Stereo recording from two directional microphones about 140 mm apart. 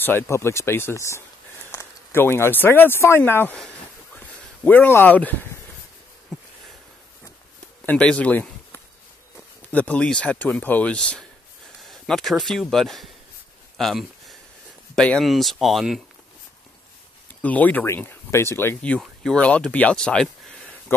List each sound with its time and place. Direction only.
0.0 s speech: 15° left (ahead or behind)
6.3 s a sound: centre (ahead or behind)
7.8 s speech: 10° left (ahead or behind)
17.4 s speech: 10° left (ahead or behind)